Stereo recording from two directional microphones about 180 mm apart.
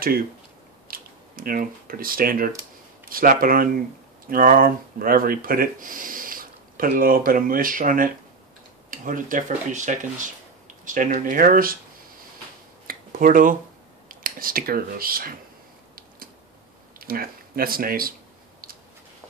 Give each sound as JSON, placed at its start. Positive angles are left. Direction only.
{"t": 0.8, "sound": "speech", "side_deg": -55}
{"t": 12.8, "sound": "a sound", "side_deg": -50}
{"t": 14.0, "sound": "speech", "side_deg": -50}
{"t": 17.0, "sound": "speech", "side_deg": -55}